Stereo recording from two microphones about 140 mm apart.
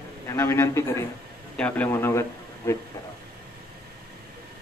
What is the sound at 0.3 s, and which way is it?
A man's voice, 20° left (ahead or behind).